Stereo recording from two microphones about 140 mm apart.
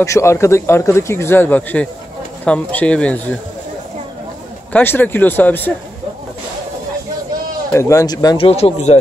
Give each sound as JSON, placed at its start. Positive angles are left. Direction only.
{"t": 0.0, "sound": "speech", "side_deg": 20}
{"t": 4.7, "sound": "speech", "side_deg": 15}
{"t": 7.7, "sound": "speech", "side_deg": 20}
{"t": 8.4, "sound": "speech", "side_deg": 45}